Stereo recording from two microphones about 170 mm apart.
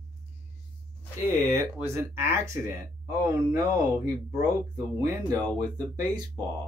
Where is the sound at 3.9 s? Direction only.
20° right (ahead or behind).